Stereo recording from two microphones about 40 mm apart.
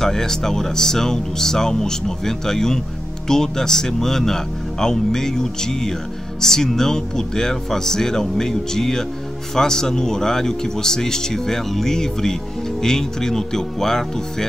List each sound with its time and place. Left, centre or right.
0.0 s speech: centre